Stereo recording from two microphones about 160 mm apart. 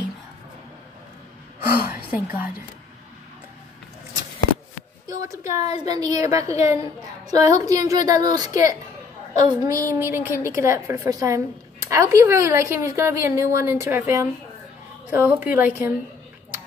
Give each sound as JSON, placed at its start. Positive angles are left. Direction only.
{"t": 1.9, "sound": "a woman's voice", "side_deg": -10}
{"t": 5.0, "sound": "speech", "side_deg": -20}
{"t": 5.4, "sound": "a woman's voice", "side_deg": 45}
{"t": 5.9, "sound": "a woman's voice", "side_deg": -25}